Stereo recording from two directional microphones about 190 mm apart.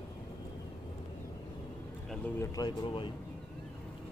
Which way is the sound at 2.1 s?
10° left (ahead or behind).